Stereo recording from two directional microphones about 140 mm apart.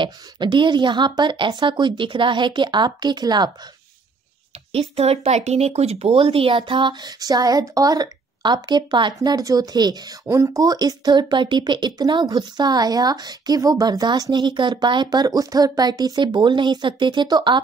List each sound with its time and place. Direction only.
0.0 s speech: 35° right (ahead or behind)
4.7 s speech: 45° right (ahead or behind)